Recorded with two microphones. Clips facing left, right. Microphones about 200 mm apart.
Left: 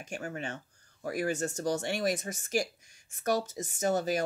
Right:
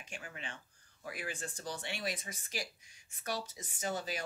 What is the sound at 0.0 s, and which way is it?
Speech, 45° left (ahead or behind).